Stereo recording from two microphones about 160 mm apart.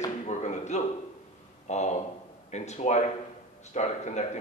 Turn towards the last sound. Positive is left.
turn(degrees=45)  # may be behind; listen again after turning